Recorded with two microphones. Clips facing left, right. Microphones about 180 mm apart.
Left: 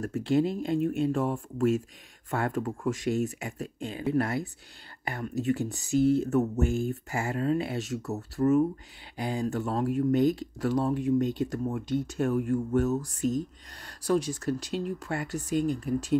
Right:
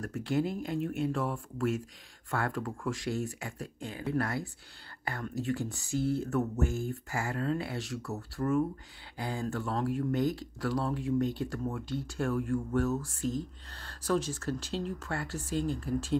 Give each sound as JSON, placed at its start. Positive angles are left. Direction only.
{"t": 0.0, "sound": "speech", "side_deg": 25}